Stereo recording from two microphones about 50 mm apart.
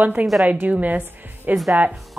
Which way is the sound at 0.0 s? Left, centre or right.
Right.